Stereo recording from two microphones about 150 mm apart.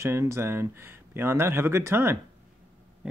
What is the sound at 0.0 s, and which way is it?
Speech, 15° right (ahead or behind).